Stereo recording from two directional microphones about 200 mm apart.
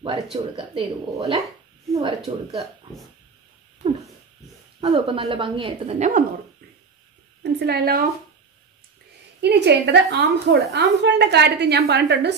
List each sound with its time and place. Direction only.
0.0 s speech: 25° right (ahead or behind)
2.0 s speech: 25° right (ahead or behind)
4.7 s speech: 25° right (ahead or behind)
7.4 s a woman's voice: 55° right (ahead or behind)
9.4 s a woman's voice: 60° right (ahead or behind)